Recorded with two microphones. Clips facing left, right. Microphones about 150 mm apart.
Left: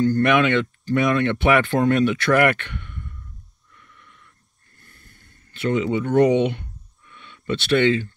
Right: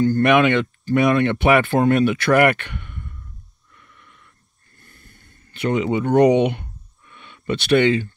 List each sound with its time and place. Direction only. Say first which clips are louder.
0.0 s speech: right 2 dB; 15° right (ahead or behind)
5.5 s speech: right 1 dB; 15° right (ahead or behind)